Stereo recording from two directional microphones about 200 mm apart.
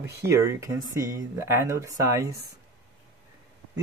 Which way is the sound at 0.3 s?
15° right (ahead or behind).